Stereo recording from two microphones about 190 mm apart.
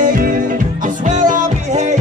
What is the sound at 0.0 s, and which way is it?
Music, 50° right (ahead or behind).